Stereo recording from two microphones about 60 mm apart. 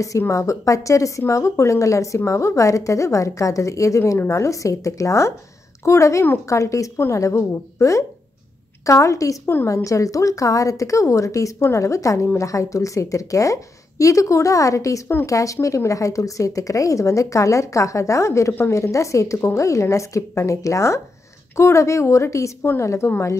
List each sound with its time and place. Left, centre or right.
0.3 s speech: left
22.6 s a woman's voice: left